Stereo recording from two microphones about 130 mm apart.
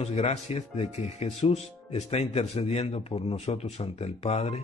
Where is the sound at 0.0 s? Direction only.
55° left (ahead or behind).